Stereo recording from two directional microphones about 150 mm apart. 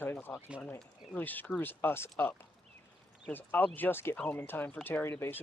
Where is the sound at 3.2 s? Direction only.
10° left (ahead or behind).